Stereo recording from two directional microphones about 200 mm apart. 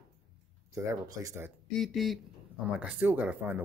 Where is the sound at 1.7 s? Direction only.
Centre (ahead or behind).